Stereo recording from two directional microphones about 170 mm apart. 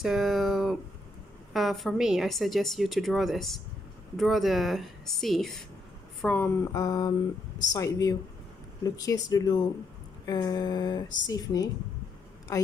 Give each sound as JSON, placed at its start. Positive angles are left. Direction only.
{"t": 0.0, "sound": "a sound", "side_deg": 0}
{"t": 1.5, "sound": "a woman's voice", "side_deg": 0}
{"t": 6.2, "sound": "speech", "side_deg": 10}